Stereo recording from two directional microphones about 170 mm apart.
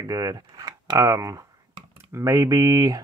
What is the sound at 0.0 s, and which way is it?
Speech, 20° right (ahead or behind).